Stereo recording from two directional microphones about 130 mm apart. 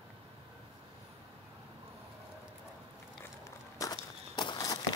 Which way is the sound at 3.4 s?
30° left (ahead or behind).